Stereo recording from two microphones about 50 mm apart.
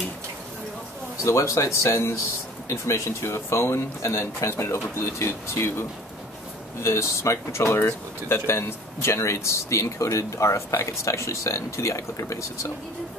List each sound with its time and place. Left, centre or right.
1.2 s speech: left